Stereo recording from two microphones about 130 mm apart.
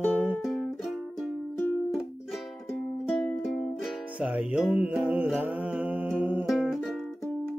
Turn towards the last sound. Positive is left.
turn(degrees=0)  # may be behind; listen again after turning